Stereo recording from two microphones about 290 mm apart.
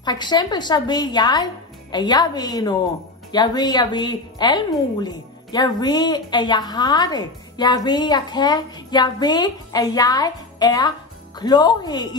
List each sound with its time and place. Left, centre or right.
0.0 s a woman's voice: centre